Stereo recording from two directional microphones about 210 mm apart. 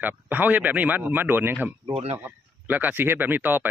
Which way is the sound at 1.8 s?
25° right (ahead or behind).